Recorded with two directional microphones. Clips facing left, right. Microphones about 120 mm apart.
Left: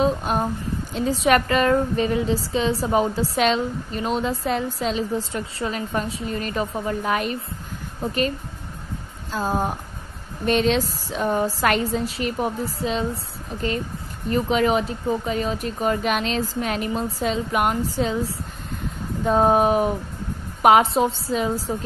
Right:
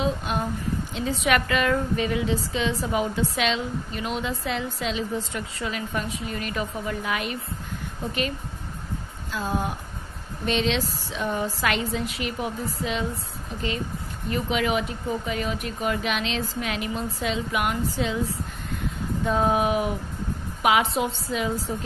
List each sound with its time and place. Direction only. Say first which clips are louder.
0.0 s speech: left 5 dB; 40° left (ahead or behind)
9.3 s speech: left 4 dB; 40° left (ahead or behind)
14.3 s a woman's voice: left 5 dB; 35° left (ahead or behind)